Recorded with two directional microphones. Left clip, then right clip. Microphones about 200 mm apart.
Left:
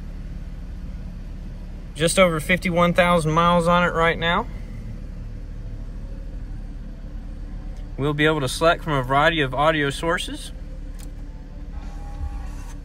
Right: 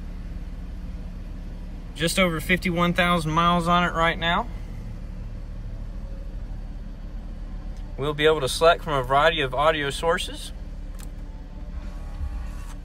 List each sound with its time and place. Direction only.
2.0 s speech: 5° right (ahead or behind)
8.0 s speech: 20° right (ahead or behind)